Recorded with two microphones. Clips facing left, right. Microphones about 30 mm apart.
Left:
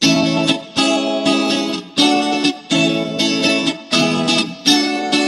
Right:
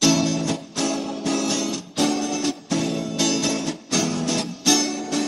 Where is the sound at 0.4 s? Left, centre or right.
Left.